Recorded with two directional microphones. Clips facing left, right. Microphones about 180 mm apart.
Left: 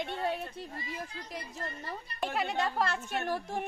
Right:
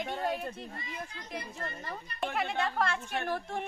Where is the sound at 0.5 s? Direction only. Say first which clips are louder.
Left 1 dB; 35° left (ahead or behind).